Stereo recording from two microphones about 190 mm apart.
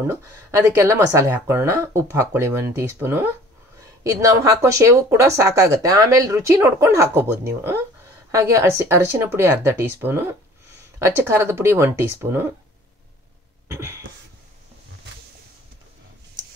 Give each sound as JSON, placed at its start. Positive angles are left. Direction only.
{"t": 0.0, "sound": "speech", "side_deg": -15}
{"t": 13.7, "sound": "cough", "side_deg": -15}